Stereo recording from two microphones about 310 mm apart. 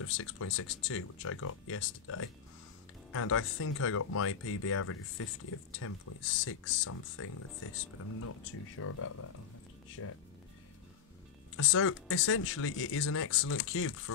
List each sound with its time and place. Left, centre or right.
0.0 s speech: left
11.5 s speech: left